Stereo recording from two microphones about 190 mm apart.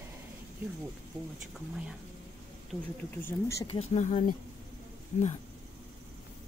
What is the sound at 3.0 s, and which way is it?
Speech, 10° left (ahead or behind).